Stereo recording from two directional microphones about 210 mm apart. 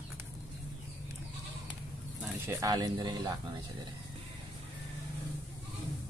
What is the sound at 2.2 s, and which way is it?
Speech, 10° right (ahead or behind).